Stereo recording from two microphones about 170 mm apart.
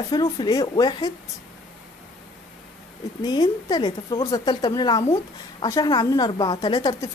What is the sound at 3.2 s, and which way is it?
A woman's voice, 25° left (ahead or behind).